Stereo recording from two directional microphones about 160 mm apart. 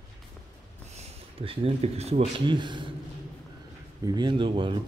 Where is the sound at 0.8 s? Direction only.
45° right (ahead or behind).